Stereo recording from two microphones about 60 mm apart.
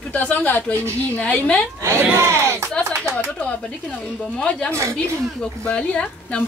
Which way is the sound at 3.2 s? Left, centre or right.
Left.